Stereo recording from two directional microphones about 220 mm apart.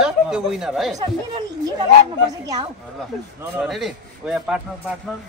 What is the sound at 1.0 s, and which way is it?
Speech, 20° right (ahead or behind).